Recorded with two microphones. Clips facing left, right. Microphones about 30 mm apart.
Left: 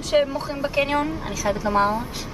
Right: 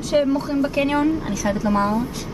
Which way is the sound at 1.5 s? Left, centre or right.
Centre.